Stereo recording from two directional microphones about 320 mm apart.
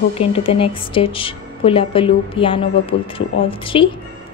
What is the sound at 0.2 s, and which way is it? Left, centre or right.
A woman's voice, centre.